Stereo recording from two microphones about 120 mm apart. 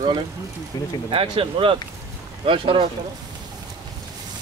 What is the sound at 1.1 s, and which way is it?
Speech, 50° right (ahead or behind).